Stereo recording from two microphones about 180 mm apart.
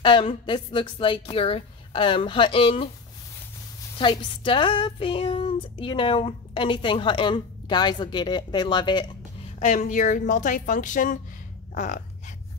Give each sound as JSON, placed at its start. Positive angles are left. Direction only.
{"t": 0.0, "sound": "speech", "side_deg": 25}
{"t": 4.0, "sound": "speech", "side_deg": 25}
{"t": 9.6, "sound": "a woman's voice", "side_deg": 45}